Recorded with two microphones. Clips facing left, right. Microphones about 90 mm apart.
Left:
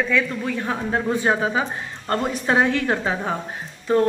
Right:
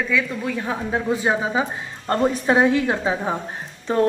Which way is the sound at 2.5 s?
15° right (ahead or behind).